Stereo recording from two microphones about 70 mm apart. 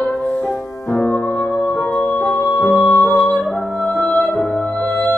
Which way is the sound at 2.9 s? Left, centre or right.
Centre.